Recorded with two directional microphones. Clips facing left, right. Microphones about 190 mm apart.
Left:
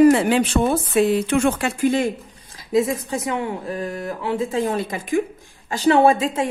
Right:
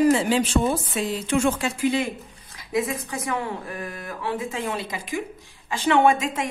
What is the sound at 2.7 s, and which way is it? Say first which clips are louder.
Speech: left 6 dB; 25° left (ahead or behind).